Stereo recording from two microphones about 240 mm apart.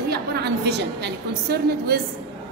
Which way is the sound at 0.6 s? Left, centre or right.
Right.